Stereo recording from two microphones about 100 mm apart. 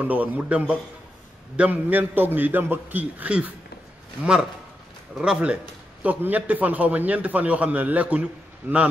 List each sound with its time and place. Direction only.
0.0 s a man's voice: 15° right (ahead or behind)